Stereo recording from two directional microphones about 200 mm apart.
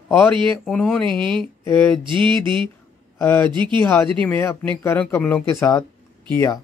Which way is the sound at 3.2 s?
10° left (ahead or behind).